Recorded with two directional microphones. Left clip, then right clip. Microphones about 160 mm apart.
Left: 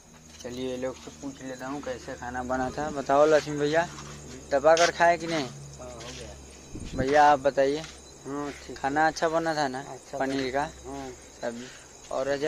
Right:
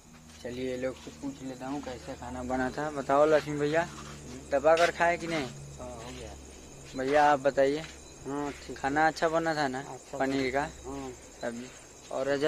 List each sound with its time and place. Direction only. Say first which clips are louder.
0.6 s speech: left 1 dB; 5° left (ahead or behind); by 5.5 s 20° left (ahead or behind)
7.0 s speech: left 4 dB; 10° left (ahead or behind)